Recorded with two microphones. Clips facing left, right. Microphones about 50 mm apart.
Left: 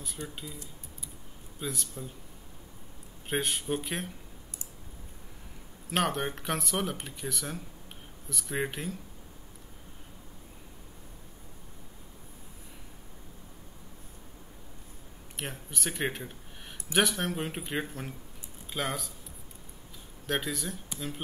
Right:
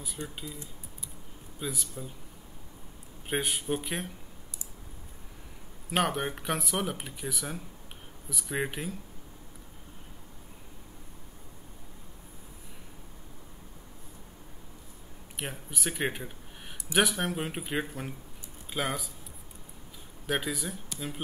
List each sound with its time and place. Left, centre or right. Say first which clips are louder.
0.2 s speech: right 1 dB; right
1.6 s speech: even; centre
3.3 s speech: even; centre
5.9 s speech: right 1 dB; centre
15.3 s speech: right 1 dB; centre
20.2 s speech: right 1 dB; centre